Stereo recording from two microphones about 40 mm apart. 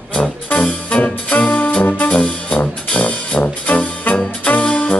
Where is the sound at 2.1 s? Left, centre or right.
Left.